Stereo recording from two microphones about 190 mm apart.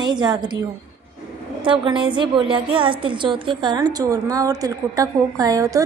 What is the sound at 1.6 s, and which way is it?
A woman's voice, 25° right (ahead or behind).